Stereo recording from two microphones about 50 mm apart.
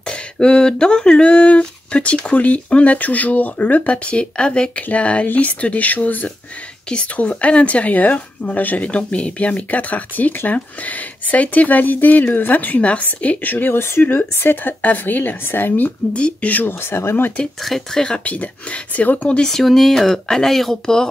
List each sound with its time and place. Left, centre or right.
0.0 s speech: centre; by 13.7 s left
13.7 s speech: left
14.0 s speech: left
16.1 s speech: left
16.6 s speech: left
17.6 s speech: centre
18.2 s speech: left
19.4 s speech: centre